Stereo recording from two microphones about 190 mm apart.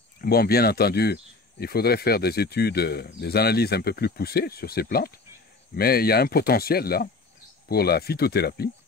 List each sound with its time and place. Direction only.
0.2 s speech: 55° left (ahead or behind)